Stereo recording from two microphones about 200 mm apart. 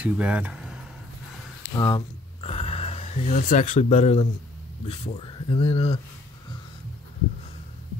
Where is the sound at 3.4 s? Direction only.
40° left (ahead or behind).